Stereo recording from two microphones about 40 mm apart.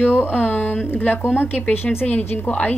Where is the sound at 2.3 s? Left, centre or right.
Left.